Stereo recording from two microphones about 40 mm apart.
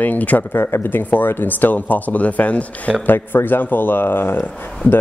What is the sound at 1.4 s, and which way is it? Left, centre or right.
Speech, left.